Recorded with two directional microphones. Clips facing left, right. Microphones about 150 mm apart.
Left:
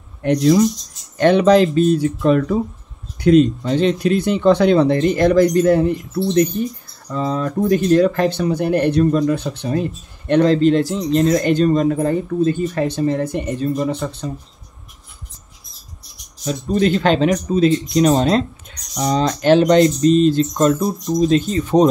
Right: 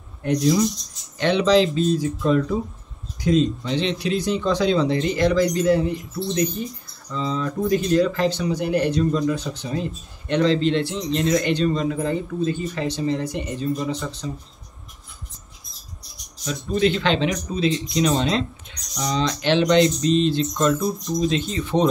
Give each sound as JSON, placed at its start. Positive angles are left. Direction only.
{"t": 0.2, "sound": "speech", "side_deg": 75}
{"t": 1.1, "sound": "speech", "side_deg": 50}
{"t": 3.6, "sound": "speech", "side_deg": 45}
{"t": 16.4, "sound": "speech", "side_deg": 45}